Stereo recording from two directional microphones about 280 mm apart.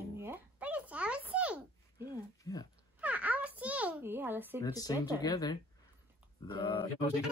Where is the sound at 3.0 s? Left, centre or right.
Centre.